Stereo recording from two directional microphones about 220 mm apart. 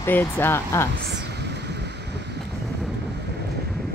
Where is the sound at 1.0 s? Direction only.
50° right (ahead or behind).